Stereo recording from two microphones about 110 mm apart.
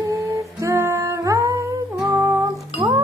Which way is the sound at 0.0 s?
30° right (ahead or behind).